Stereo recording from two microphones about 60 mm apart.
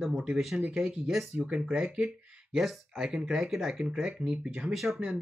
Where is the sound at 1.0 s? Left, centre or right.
Centre.